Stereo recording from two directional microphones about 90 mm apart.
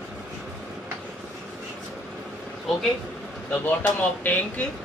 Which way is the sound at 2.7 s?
Centre (ahead or behind).